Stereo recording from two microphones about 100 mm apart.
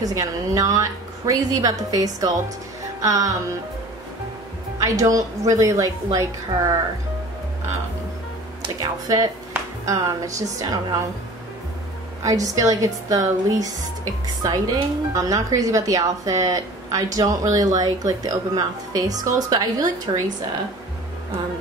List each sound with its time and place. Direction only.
0.0 s a woman's voice: 35° right (ahead or behind)
3.0 s music: 35° right (ahead or behind)
4.8 s a woman's voice: 35° right (ahead or behind)
8.8 s a woman's voice: 40° right (ahead or behind)
12.2 s a woman's voice: 35° right (ahead or behind)